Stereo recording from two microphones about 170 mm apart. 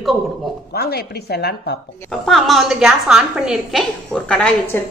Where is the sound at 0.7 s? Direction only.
70° left (ahead or behind).